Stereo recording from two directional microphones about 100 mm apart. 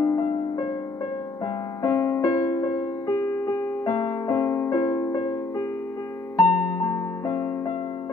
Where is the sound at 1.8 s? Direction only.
30° left (ahead or behind).